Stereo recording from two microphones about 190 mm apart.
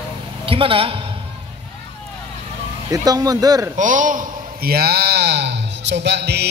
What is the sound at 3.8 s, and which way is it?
A man's voice, 45° right (ahead or behind).